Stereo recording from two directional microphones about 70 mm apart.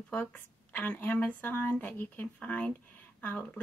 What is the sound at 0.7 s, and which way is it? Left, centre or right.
A woman's voice, left.